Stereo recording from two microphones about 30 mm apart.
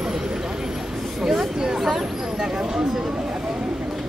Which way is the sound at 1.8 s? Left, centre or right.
Centre.